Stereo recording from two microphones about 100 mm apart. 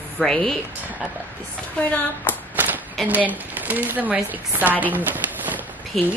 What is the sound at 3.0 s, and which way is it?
A woman's voice, 15° right (ahead or behind).